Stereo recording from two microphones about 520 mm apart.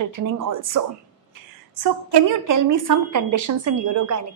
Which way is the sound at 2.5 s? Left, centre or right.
Right.